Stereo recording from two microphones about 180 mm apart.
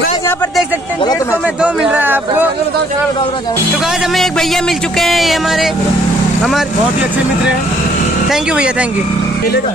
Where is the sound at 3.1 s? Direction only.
25° left (ahead or behind).